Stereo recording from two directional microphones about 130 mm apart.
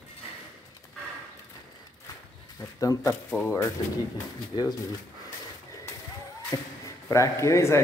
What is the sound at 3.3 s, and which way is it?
Speech, 10° right (ahead or behind).